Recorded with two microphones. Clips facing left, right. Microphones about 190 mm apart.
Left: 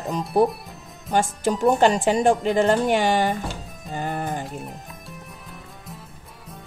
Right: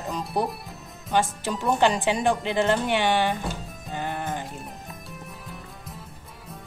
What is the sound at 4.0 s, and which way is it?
Music, 45° left (ahead or behind).